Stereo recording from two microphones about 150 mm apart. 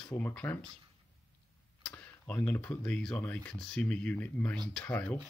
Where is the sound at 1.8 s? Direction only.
10° left (ahead or behind).